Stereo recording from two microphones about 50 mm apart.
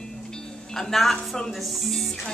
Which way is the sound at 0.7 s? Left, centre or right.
Centre.